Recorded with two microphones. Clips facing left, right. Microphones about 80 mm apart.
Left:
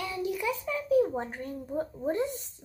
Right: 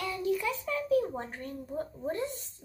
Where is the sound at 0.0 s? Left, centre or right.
Centre.